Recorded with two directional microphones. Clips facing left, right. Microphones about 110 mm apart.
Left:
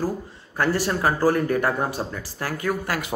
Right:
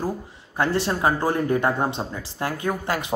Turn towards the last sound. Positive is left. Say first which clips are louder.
# even
turn(degrees=-25)  # may be behind; listen again after turning